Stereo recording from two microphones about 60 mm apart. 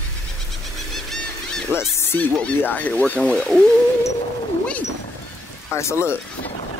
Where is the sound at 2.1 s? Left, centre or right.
Left.